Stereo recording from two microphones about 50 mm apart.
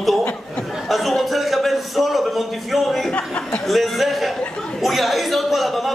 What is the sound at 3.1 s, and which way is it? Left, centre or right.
Speech, left.